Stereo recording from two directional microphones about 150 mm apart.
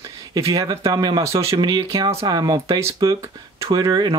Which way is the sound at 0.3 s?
25° right (ahead or behind).